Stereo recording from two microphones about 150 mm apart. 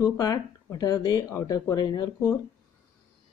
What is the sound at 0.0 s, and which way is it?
Speech, 25° left (ahead or behind).